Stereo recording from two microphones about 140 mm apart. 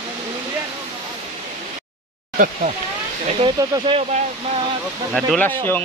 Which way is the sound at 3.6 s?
25° right (ahead or behind).